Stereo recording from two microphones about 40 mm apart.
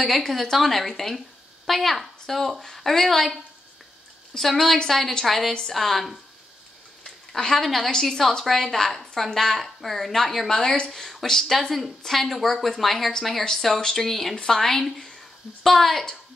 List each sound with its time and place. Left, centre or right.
0.0 s a woman's voice: centre
4.4 s a woman's voice: centre
7.3 s a woman's voice: centre